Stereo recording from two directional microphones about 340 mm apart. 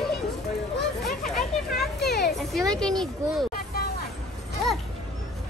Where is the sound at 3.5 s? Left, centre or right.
Left.